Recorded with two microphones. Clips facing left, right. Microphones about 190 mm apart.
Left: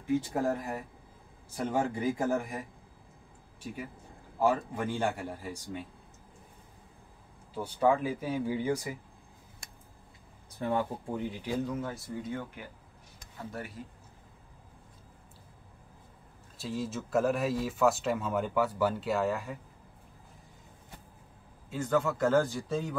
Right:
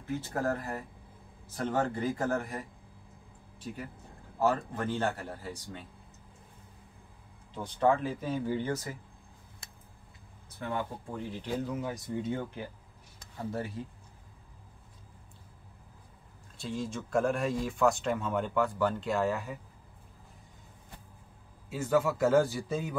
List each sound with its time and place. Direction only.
0.0 s a man's voice: 15° left (ahead or behind)
4.4 s a man's voice: 10° left (ahead or behind)
7.5 s a man's voice: 10° left (ahead or behind)
10.6 s speech: 35° left (ahead or behind)
11.5 s speech: 5° right (ahead or behind)
12.2 s speech: 30° right (ahead or behind)
16.5 s speech: 5° left (ahead or behind)
21.6 s speech: 5° right (ahead or behind)